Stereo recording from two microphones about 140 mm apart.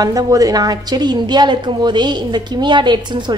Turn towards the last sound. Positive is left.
turn(degrees=-35)  # may be behind; listen again after turning